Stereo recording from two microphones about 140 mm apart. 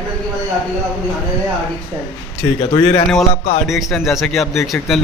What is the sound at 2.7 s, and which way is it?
Speech, 25° left (ahead or behind).